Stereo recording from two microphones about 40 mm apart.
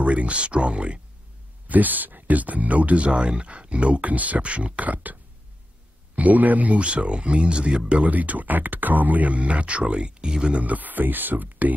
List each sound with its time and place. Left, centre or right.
0.0 s speech: right
1.7 s speech: right
6.1 s speech: right
8.0 s speech: right
10.6 s speech: right